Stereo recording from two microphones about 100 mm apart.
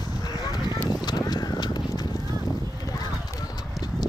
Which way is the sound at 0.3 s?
45° left (ahead or behind).